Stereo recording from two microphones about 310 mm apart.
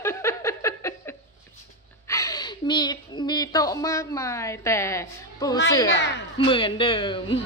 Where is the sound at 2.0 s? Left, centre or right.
Centre.